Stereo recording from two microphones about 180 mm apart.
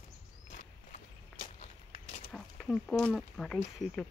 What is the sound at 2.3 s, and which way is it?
Speech, centre (ahead or behind).